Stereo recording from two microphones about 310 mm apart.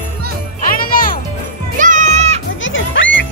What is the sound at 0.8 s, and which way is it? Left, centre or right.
Music, left.